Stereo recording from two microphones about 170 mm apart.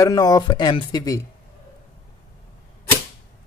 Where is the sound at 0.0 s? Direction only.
20° left (ahead or behind).